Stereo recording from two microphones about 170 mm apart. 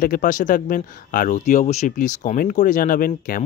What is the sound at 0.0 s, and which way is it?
Speech, 50° left (ahead or behind).